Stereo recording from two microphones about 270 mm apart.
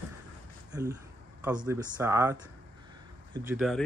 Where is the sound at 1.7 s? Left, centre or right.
Centre.